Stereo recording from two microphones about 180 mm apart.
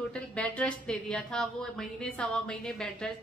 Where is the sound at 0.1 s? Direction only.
5° left (ahead or behind).